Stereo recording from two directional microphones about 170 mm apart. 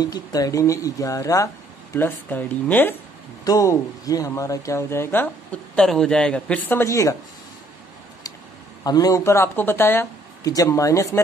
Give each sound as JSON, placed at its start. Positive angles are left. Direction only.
{"t": 0.0, "sound": "speech", "side_deg": 20}
{"t": 8.8, "sound": "speech", "side_deg": 20}